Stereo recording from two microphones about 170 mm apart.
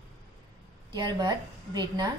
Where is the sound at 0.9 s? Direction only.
25° right (ahead or behind).